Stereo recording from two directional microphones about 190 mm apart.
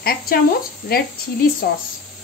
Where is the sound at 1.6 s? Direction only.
50° left (ahead or behind).